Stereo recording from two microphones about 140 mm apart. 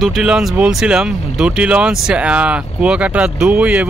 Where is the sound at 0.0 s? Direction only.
Centre (ahead or behind).